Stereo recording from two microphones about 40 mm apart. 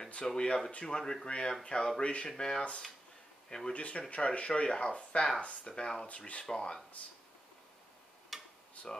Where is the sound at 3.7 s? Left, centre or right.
Left.